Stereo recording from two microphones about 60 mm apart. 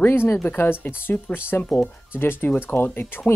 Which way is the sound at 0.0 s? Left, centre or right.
Left.